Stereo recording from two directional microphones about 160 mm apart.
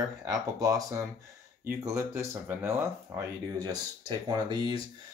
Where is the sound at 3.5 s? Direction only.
25° right (ahead or behind).